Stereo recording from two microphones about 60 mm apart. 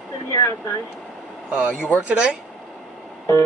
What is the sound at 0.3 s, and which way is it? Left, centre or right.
Speech, left.